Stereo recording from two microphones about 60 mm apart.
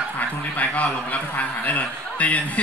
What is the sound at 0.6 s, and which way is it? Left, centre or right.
A man's voice, left.